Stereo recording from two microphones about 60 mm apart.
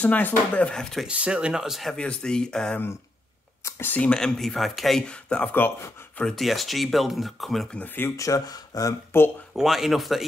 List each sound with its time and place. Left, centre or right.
0.0 s speech: left
0.7 s speech: centre
1.0 s speech: centre
2.0 s speech: centre
3.8 s speech: left
4.1 s speech: centre
4.4 s speech: centre
5.0 s speech: centre
6.2 s speech: centre
7.8 s speech: left
8.2 s speech: left
9.1 s speech: left
9.6 s speech: centre